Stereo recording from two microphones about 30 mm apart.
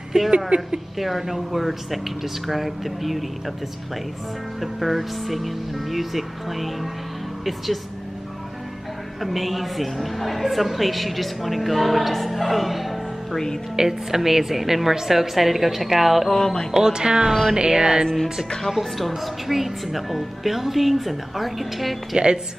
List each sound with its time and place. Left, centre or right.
0.1 s speech: right
0.5 s speech: right
0.9 s speech: centre
9.2 s speech: centre
13.3 s a woman's voice: centre
13.7 s a woman's voice: centre
16.3 s a sound: centre
16.8 s speech: right
18.0 s a sound: centre
18.8 s speech: centre
19.1 s speech: centre
22.1 s speech: right